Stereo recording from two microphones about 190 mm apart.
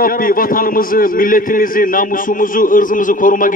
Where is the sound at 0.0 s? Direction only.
50° left (ahead or behind).